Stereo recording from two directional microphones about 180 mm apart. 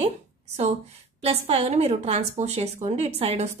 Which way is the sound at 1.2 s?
35° right (ahead or behind).